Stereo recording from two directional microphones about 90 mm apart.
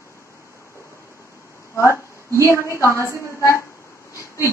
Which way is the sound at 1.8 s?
30° left (ahead or behind).